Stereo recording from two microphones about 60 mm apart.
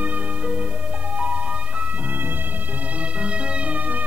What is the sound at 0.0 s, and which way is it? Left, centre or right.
Music, right.